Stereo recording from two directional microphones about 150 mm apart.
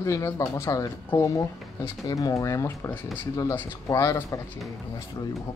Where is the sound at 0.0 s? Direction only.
20° left (ahead or behind).